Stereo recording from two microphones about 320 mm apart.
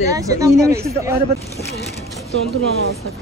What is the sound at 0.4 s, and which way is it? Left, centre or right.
Speech, centre.